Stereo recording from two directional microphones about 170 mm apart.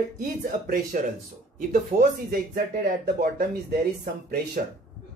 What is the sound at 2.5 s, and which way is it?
Speech, 55° right (ahead or behind).